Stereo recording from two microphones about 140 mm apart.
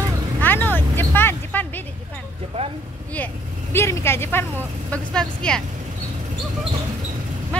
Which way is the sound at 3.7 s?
20° left (ahead or behind).